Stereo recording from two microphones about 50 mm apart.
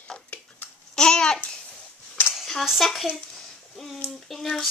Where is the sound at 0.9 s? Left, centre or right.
Centre.